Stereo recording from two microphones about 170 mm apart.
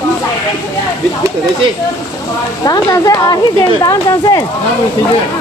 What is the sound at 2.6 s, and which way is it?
Speech, 20° left (ahead or behind).